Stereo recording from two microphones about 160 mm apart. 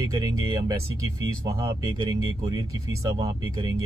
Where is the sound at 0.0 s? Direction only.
25° right (ahead or behind).